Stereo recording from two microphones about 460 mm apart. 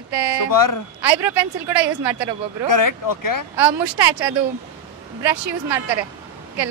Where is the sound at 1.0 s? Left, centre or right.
Right.